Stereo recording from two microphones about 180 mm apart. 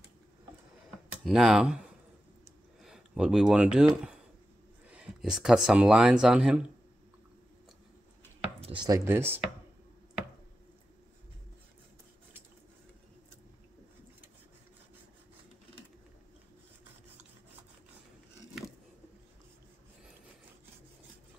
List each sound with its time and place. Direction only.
1.2 s speech: 5° right (ahead or behind)
2.8 s speech: 5° right (ahead or behind)
8.5 s chopping: 30° right (ahead or behind)
8.8 s speech: 15° right (ahead or behind)